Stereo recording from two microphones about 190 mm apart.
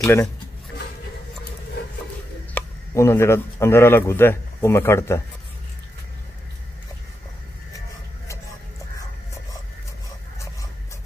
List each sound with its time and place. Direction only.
0.0 s speech: 15° left (ahead or behind)
2.5 s speech: 15° left (ahead or behind)